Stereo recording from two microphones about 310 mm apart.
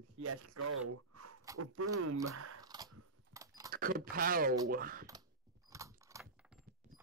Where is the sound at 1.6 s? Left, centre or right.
Right.